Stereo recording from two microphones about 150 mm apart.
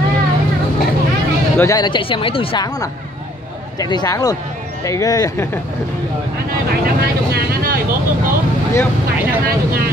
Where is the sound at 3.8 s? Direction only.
25° left (ahead or behind).